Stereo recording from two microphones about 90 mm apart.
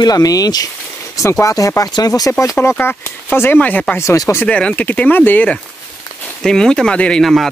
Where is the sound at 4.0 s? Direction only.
35° left (ahead or behind).